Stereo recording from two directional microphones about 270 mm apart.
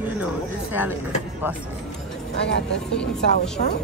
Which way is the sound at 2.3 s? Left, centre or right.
Left.